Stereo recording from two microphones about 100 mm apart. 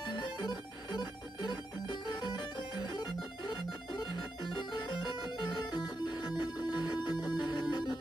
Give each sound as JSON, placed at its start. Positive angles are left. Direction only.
{"t": 0.0, "sound": "music", "side_deg": 45}